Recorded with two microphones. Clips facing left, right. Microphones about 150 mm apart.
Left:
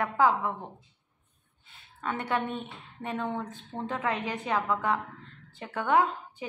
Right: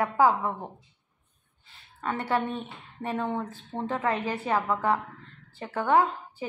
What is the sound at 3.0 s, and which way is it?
A woman's voice, 5° right (ahead or behind).